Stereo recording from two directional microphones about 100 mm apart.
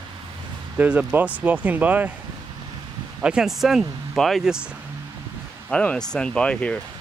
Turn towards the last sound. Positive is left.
turn(degrees=10)  # may be behind; listen again after turning